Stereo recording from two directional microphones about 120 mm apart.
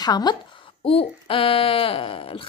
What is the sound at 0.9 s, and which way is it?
A woman's voice, 50° left (ahead or behind).